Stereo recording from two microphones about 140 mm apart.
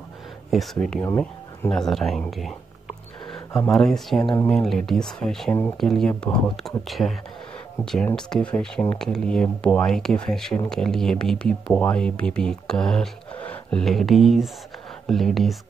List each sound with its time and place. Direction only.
0.5 s speech: centre (ahead or behind)
1.0 s speech: 15° left (ahead or behind)
1.7 s speech: 5° left (ahead or behind)
3.6 s speech: 5° left (ahead or behind)